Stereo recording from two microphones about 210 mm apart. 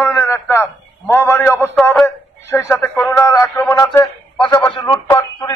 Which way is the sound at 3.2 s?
15° left (ahead or behind).